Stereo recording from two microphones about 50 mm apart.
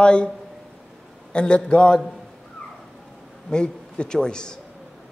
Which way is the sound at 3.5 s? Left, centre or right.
Centre.